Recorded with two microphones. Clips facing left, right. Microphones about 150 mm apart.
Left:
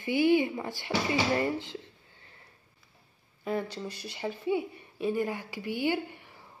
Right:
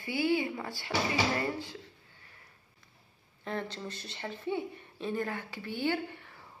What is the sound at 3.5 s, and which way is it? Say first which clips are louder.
Speech: left 4 dB; 10° left (ahead or behind).